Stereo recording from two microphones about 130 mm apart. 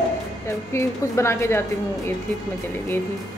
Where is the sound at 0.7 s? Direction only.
20° left (ahead or behind).